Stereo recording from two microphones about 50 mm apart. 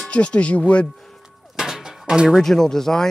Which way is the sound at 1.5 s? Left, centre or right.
Centre.